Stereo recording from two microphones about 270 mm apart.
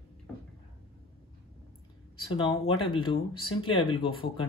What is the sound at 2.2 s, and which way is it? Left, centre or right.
Speech, centre.